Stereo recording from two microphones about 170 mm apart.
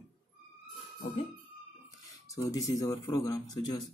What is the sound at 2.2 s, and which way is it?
Speech, 20° left (ahead or behind).